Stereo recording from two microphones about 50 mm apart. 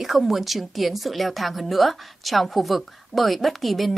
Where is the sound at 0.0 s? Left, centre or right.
Centre.